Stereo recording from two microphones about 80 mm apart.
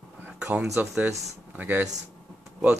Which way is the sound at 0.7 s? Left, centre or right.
Centre.